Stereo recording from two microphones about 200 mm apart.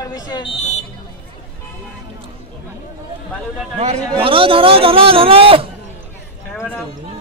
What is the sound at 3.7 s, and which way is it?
A man's voice, 25° right (ahead or behind).